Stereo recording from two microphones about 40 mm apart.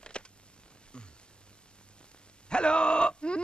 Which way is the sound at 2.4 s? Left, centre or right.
Left.